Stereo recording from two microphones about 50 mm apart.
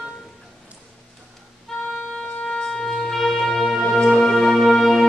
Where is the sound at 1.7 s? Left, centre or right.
Centre.